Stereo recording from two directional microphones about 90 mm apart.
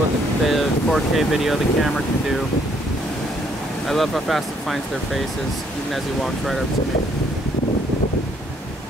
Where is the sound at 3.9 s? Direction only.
Centre (ahead or behind).